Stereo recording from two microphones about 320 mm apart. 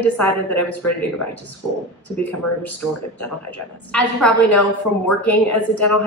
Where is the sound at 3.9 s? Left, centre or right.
Centre.